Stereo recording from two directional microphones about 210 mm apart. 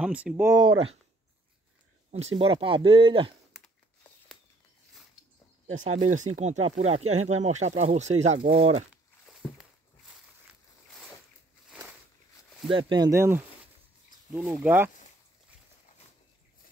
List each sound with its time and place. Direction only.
0.0 s speech: 5° right (ahead or behind); by 0.8 s 20° right (ahead or behind)
2.0 s speech: 30° right (ahead or behind)
6.0 s speech: 35° right (ahead or behind)
12.7 s speech: 20° right (ahead or behind)